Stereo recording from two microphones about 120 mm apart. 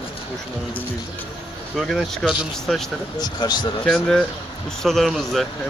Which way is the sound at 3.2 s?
35° left (ahead or behind).